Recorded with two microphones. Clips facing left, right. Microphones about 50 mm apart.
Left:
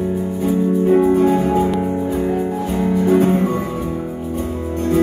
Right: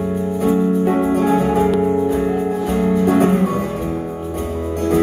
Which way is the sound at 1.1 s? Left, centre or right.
Right.